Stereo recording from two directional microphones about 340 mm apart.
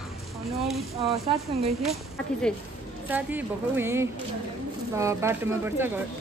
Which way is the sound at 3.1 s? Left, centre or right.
Centre.